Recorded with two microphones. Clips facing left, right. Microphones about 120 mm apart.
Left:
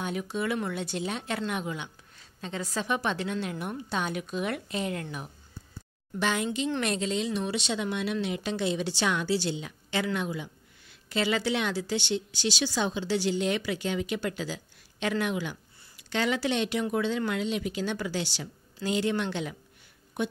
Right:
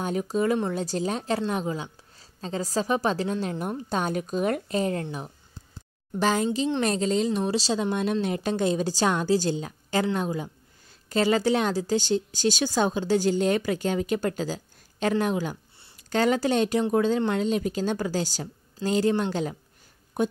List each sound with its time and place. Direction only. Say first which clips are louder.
0.0 s a woman's voice: right 6 dB; 40° right (ahead or behind)
5.0 s speech: right 4 dB; 25° right (ahead or behind)
6.1 s a woman's voice: right 5 dB; 35° right (ahead or behind)